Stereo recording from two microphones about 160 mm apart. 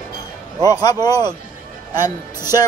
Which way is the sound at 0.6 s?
25° left (ahead or behind).